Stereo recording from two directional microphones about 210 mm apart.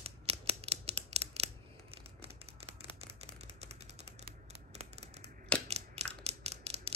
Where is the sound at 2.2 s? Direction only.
30° right (ahead or behind).